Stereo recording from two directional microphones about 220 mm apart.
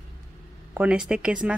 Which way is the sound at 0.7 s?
5° right (ahead or behind).